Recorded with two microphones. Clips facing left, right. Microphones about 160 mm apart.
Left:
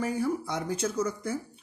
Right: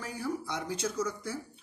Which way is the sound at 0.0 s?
55° left (ahead or behind).